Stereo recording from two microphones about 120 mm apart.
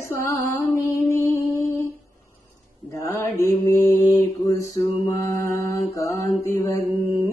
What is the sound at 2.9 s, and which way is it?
Mantra, 20° left (ahead or behind).